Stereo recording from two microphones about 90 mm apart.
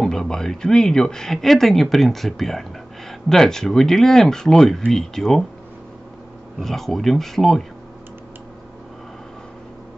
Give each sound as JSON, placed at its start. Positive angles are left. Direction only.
{"t": 0.0, "sound": "speech", "side_deg": 5}
{"t": 6.6, "sound": "speech", "side_deg": 5}